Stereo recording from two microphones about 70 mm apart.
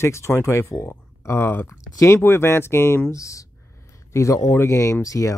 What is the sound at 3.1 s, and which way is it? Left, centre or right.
Speech, left.